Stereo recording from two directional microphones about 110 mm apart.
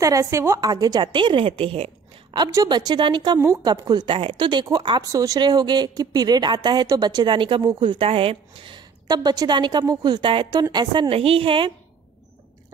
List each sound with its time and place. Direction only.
0.0 s speech: 30° right (ahead or behind); by 1.9 s 55° right (ahead or behind)
2.3 s speech: 35° right (ahead or behind)
3.3 s a woman's voice: 25° right (ahead or behind)
3.7 s speech: 40° right (ahead or behind)
5.0 s speech: 30° right (ahead or behind); by 8.8 s 50° right (ahead or behind)
9.0 s speech: 35° right (ahead or behind)
10.6 s speech: 40° right (ahead or behind)
11.1 s a woman's voice: 60° right (ahead or behind)